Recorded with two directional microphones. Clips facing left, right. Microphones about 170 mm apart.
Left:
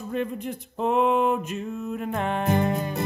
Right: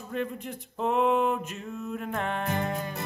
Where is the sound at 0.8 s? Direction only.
5° left (ahead or behind).